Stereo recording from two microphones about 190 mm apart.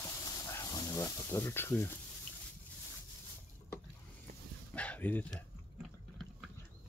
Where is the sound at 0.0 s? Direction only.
15° left (ahead or behind).